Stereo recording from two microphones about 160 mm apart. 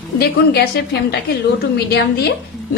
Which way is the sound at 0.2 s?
90° left.